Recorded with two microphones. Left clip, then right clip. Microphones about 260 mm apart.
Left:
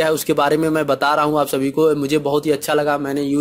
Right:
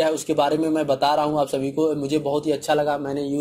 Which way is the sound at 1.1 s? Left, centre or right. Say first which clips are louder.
Left 4 dB; left.